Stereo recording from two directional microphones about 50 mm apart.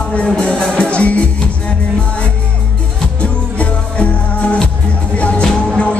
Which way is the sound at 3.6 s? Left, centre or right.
Left.